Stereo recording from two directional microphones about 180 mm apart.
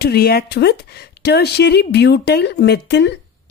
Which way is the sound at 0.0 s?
60° left (ahead or behind).